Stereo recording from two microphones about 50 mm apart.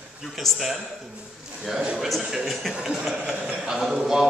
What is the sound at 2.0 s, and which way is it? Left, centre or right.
A man's voice, centre.